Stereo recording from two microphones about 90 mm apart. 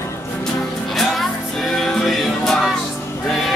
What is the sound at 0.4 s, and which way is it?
Music, 5° left (ahead or behind).